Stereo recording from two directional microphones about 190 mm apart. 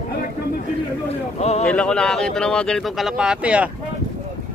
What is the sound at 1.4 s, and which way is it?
Speech, 35° left (ahead or behind).